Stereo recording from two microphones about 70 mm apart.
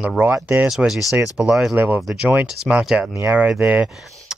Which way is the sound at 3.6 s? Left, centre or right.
Right.